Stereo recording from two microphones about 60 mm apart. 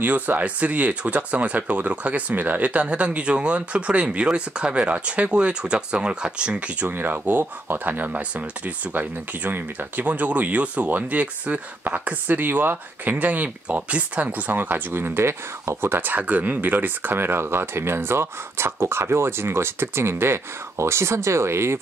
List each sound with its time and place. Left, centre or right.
0.0 s speech: right
6.9 s speech: right